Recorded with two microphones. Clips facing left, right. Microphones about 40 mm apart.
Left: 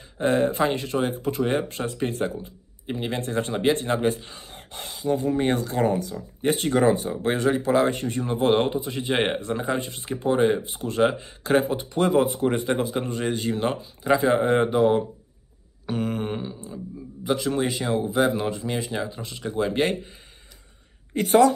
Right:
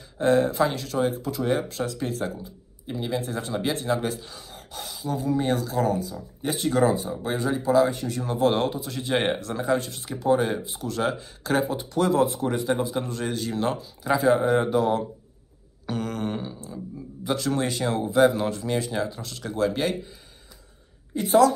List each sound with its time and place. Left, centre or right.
0.2 s speech: left
8.2 s speech: left
10.6 s speech: left
15.9 s a sound: centre
17.2 s speech: centre
19.7 s speech: left
21.1 s a woman's voice: left